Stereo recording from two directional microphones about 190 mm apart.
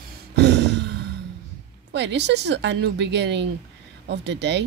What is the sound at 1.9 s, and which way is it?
Speech, 65° right (ahead or behind).